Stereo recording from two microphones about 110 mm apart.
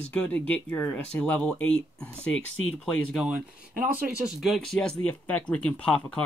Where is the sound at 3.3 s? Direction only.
15° right (ahead or behind).